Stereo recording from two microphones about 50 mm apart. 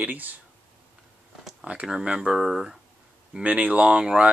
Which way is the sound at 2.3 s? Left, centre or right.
Centre.